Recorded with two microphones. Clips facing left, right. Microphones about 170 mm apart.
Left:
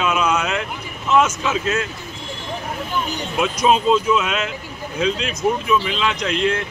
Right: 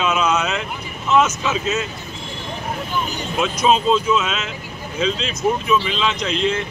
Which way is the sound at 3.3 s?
10° left (ahead or behind).